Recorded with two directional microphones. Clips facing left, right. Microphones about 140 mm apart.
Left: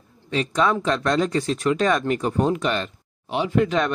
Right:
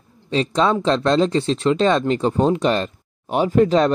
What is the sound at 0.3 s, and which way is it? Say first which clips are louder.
Speech: right 3 dB; 30° right (ahead or behind).